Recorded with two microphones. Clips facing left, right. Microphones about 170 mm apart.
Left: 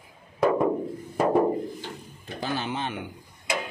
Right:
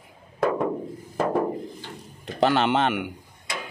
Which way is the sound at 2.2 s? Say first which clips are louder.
Right 10 dB; 75° right (ahead or behind).